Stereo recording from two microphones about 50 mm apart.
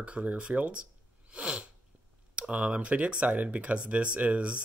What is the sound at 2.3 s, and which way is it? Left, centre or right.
Speech, right.